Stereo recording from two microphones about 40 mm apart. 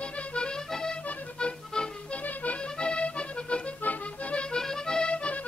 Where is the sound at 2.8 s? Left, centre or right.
Left.